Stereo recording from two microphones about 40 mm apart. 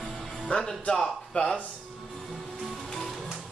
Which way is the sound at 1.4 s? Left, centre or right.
Left.